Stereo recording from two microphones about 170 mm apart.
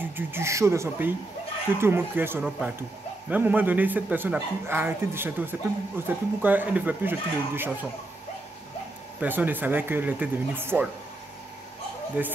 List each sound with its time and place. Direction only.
0.1 s speech: 15° right (ahead or behind)
9.2 s speech: 10° right (ahead or behind)
12.2 s speech: 10° right (ahead or behind)